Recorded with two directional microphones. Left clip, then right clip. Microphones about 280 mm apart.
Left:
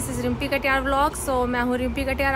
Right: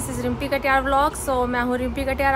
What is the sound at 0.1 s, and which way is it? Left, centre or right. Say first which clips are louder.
A woman's voice: right 1 dB; centre.